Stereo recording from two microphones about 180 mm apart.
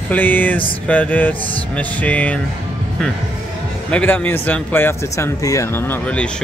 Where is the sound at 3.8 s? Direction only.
10° left (ahead or behind).